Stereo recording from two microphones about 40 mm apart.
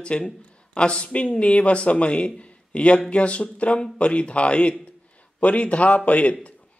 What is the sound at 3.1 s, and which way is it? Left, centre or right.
Speech, left.